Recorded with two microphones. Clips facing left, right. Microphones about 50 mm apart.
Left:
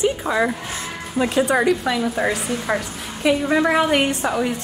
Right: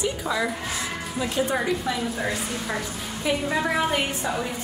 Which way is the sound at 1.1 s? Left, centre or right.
Left.